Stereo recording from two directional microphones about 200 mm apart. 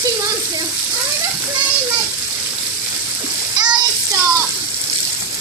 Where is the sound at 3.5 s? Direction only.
20° right (ahead or behind).